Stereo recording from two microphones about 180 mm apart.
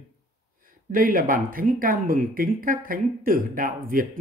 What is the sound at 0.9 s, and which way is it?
Speech, 50° right (ahead or behind).